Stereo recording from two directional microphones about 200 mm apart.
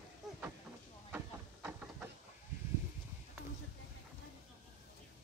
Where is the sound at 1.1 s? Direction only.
10° right (ahead or behind).